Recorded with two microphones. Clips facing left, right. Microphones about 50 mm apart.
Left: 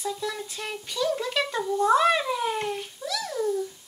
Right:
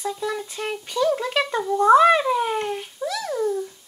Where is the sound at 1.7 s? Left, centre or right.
Centre.